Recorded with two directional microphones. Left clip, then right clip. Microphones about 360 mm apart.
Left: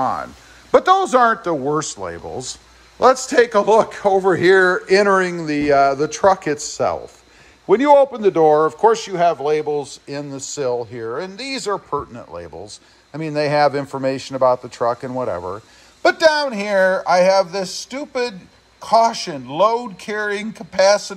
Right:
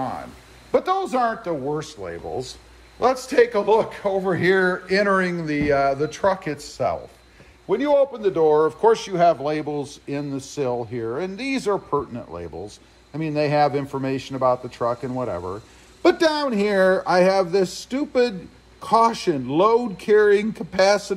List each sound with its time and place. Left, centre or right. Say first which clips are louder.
0.7 s a man's voice: left 8 dB; left; by 21.1 s centre